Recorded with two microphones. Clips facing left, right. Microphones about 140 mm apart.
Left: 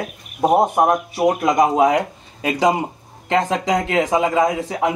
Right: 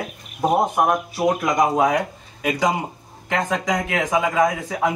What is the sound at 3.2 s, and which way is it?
A man's voice, 25° left (ahead or behind).